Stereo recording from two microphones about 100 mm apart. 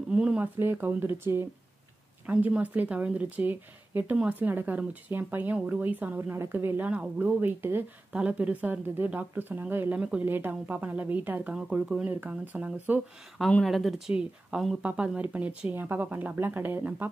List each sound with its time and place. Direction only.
0.1 s speech: 10° right (ahead or behind)
0.6 s speech: 20° right (ahead or behind)
2.2 s a woman's voice: 15° right (ahead or behind)
13.5 s a woman's voice: 5° left (ahead or behind); by 17.1 s 20° right (ahead or behind)